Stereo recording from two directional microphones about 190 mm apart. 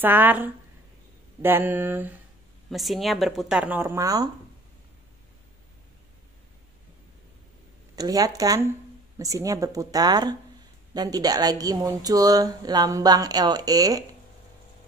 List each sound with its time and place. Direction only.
0.0 s mantra: 10° right (ahead or behind)
2.7 s speech: centre (ahead or behind); by 4.3 s 20° right (ahead or behind)
7.9 s speech: 20° right (ahead or behind)